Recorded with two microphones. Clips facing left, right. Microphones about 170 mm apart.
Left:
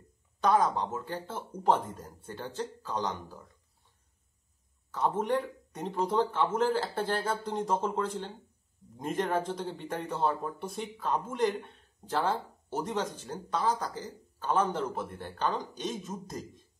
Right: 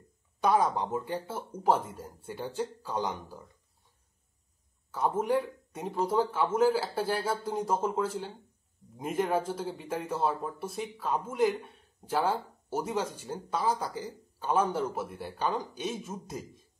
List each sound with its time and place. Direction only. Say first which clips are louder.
0.4 s speech: even; 10° right (ahead or behind)
4.9 s speech: right 1 dB; 10° right (ahead or behind)